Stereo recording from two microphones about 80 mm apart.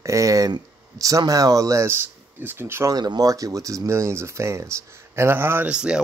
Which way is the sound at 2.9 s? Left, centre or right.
Right.